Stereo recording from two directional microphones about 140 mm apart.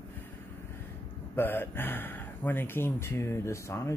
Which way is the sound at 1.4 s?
15° left (ahead or behind).